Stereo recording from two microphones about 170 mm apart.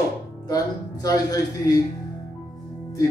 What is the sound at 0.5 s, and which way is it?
Speech, 20° left (ahead or behind).